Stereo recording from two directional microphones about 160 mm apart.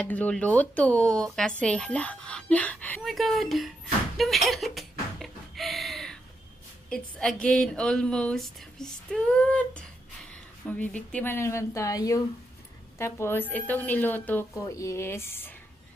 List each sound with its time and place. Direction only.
0.0 s a woman's voice: 10° left (ahead or behind)
4.2 s a sound: centre (ahead or behind)
6.9 s a woman's voice: 5° left (ahead or behind)